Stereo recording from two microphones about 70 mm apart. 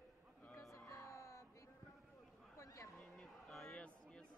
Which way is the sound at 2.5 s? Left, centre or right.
Left.